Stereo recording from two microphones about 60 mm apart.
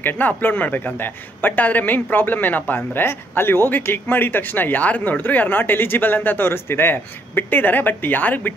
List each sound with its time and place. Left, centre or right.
0.0 s a man's voice: left